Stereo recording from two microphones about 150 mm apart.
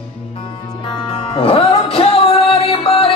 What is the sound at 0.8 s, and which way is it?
Music, 35° left (ahead or behind).